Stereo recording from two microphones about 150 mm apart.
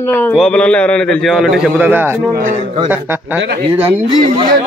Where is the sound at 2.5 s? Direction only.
50° right (ahead or behind).